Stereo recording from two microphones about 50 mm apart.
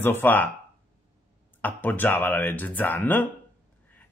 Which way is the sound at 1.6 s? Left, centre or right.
Left.